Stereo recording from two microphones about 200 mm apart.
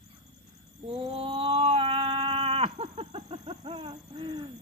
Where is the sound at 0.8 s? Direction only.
30° right (ahead or behind).